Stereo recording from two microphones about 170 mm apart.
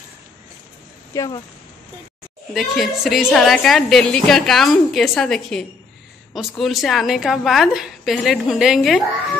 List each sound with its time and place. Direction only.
1.1 s speech: 20° left (ahead or behind)
2.5 s a woman's voice: centre (ahead or behind)